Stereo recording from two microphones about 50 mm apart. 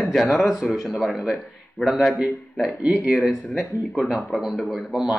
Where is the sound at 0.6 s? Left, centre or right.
Centre.